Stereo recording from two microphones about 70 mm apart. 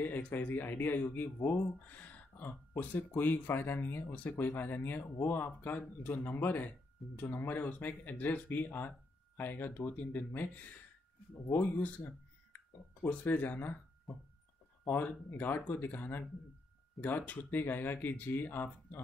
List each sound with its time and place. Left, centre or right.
0.0 s speech: left
11.7 s speech: left
14.9 s speech: left